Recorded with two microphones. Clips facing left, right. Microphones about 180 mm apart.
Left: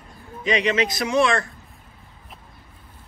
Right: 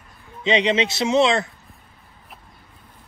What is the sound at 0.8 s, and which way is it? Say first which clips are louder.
Speech: right 2 dB; 25° right (ahead or behind).